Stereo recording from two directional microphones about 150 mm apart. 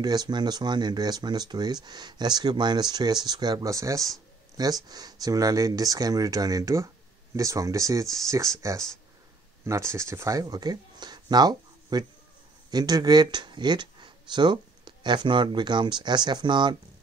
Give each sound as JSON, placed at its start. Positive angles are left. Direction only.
{"t": 0.0, "sound": "speech", "side_deg": -25}
{"t": 4.1, "sound": "a sound", "side_deg": -25}
{"t": 4.8, "sound": "speech", "side_deg": -25}